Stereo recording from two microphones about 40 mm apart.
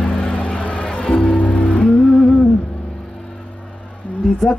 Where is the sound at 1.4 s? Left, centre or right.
Left.